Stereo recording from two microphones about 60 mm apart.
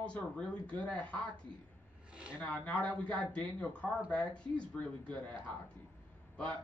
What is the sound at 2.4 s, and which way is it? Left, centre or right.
Speech, left.